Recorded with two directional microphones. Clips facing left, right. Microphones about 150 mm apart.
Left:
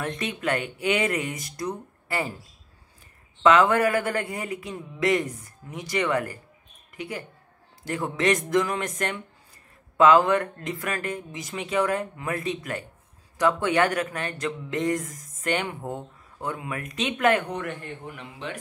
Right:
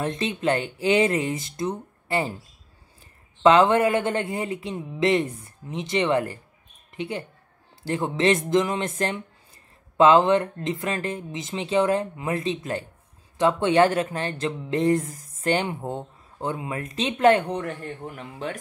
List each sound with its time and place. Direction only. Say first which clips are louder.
0.0 s speech: right 4 dB; 25° right (ahead or behind)
3.4 s speech: right 2 dB; 25° right (ahead or behind); by 18.6 s 45° right (ahead or behind)